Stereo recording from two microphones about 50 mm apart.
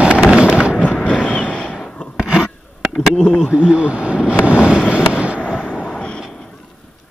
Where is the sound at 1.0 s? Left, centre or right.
Left.